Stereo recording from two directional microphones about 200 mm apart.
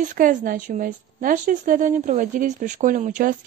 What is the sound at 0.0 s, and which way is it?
A woman's voice, 40° right (ahead or behind).